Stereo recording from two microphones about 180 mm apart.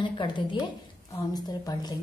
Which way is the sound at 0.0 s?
25° left (ahead or behind).